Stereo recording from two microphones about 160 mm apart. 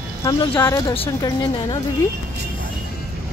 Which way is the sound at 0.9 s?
35° left (ahead or behind).